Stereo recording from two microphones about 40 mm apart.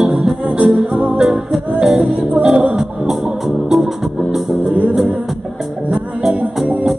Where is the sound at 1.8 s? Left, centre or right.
Right.